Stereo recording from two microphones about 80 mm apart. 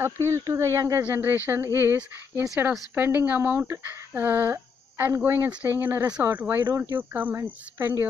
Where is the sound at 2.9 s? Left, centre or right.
Right.